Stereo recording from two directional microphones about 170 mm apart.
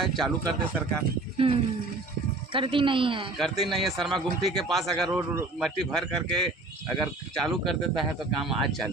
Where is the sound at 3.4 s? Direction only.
Centre (ahead or behind).